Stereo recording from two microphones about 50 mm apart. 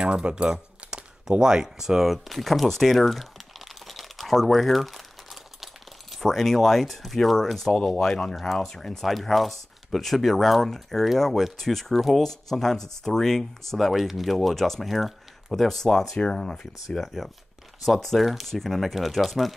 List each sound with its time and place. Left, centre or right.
0.0 s keys jangling: centre
1.4 s a sound: centre
6.1 s speech: centre
9.0 s speech: centre